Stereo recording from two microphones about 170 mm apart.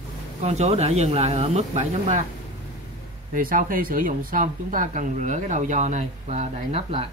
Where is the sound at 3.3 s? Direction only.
55° right (ahead or behind); by 7.1 s 35° right (ahead or behind).